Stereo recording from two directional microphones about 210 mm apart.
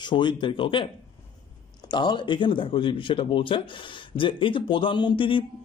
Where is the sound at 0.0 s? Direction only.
20° left (ahead or behind).